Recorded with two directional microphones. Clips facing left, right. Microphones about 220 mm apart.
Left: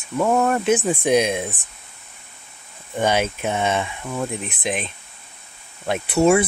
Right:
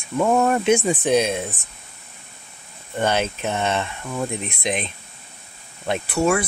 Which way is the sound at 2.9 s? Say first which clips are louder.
Left 1 dB; 10° left (ahead or behind).